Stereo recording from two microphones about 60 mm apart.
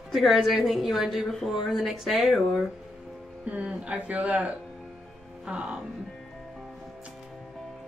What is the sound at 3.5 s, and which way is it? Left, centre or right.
Speech, right.